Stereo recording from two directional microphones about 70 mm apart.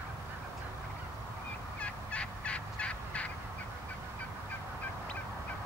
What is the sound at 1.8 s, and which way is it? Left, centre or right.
Fowl, centre.